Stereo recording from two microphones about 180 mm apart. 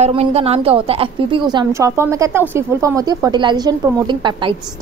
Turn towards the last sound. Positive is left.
turn(degrees=-25)  # may be behind; listen again after turning